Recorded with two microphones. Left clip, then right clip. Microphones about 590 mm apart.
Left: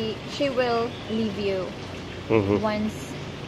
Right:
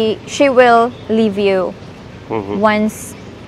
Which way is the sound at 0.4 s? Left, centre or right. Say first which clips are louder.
Right 15 dB; right.